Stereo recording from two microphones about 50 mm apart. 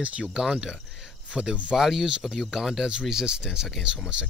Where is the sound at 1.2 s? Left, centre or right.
Right.